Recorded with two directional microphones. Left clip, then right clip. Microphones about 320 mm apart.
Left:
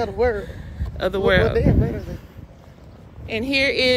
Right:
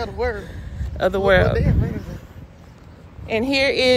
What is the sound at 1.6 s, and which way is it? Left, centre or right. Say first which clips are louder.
Speech: left 5 dB; left.